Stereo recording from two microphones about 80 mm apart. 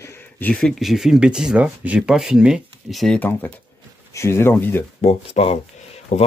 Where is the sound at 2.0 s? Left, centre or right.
Centre.